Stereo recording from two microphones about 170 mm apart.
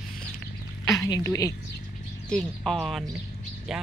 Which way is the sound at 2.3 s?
5° left (ahead or behind).